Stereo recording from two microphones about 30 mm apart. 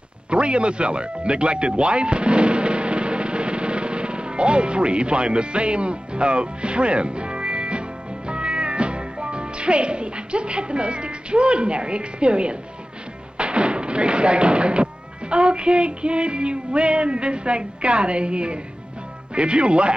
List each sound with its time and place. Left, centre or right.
0.3 s speech: right